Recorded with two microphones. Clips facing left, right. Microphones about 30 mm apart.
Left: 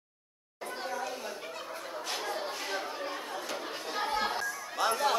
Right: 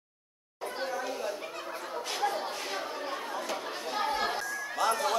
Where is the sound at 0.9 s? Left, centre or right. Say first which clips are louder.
Right 2 dB; centre.